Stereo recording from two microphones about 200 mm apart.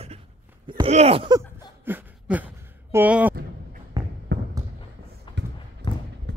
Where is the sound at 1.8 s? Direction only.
10° right (ahead or behind).